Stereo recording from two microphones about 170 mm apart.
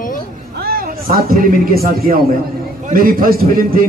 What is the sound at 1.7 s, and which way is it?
A man's voice, 60° right (ahead or behind).